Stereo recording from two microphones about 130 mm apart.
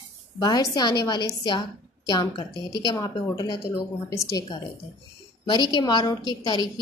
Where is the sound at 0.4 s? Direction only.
30° left (ahead or behind).